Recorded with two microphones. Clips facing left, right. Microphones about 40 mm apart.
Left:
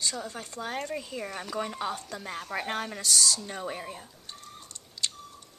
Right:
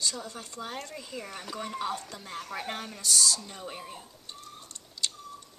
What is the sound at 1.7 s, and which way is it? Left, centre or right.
Speech, centre.